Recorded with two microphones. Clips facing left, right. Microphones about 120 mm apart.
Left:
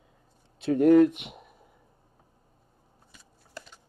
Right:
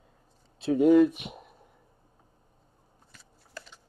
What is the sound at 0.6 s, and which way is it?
Speech, centre (ahead or behind).